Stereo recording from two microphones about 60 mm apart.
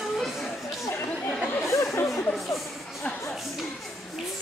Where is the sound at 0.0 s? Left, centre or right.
Centre.